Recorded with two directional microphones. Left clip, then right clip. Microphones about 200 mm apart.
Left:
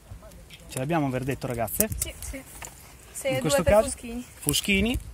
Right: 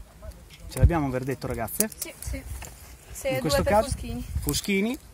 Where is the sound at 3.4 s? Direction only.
45° left (ahead or behind).